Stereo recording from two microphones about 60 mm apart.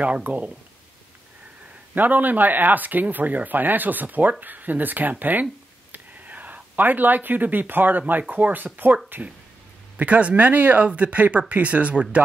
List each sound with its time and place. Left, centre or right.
0.0 s speech: right
2.0 s speech: right
5.2 s a sound: right
8.1 s speech: right
9.9 s speech: right